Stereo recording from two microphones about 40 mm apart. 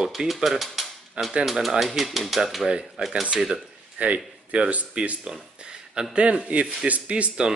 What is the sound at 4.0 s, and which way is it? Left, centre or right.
A man's voice, right.